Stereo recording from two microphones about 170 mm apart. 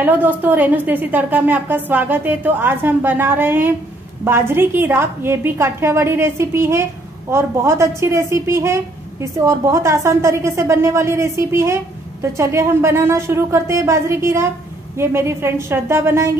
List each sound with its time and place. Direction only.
0.0 s a woman's voice: 10° right (ahead or behind)